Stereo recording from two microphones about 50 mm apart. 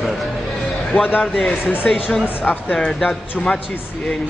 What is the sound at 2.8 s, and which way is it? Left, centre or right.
Speech, centre.